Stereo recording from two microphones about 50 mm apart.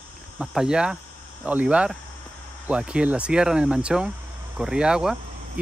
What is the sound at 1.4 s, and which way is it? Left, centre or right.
Speech, right.